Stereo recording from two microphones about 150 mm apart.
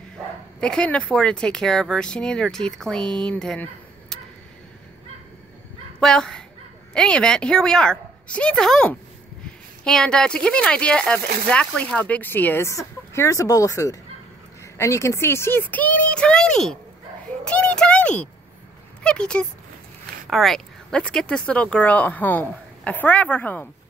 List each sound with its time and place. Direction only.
0.6 s speech: 5° left (ahead or behind)
5.9 s speech: 5° left (ahead or behind)